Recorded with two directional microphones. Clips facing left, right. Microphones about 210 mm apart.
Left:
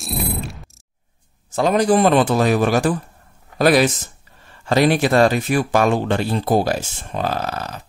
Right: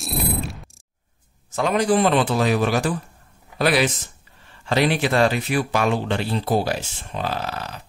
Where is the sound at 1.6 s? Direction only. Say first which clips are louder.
Left 3 dB; 40° left (ahead or behind).